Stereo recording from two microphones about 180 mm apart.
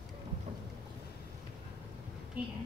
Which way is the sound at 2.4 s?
10° right (ahead or behind).